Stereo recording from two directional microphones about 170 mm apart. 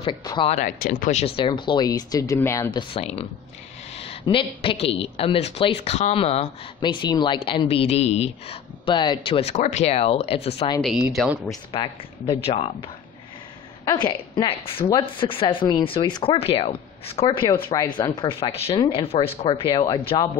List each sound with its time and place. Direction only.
0.0 s speech: 25° left (ahead or behind)
0.5 s speech: 50° left (ahead or behind)
1.1 s speech: 35° left (ahead or behind); by 2.7 s 15° left (ahead or behind)
2.7 s speech: 35° left (ahead or behind)
10.8 s speech: centre (ahead or behind)
11.7 s speech: 30° left (ahead or behind)
13.8 s speech: 25° left (ahead or behind)